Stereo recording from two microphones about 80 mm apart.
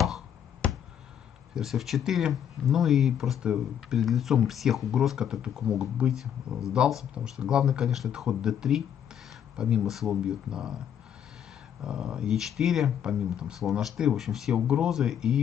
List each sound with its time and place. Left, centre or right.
0.6 s a sound: centre
1.5 s speech: centre
11.8 s speech: centre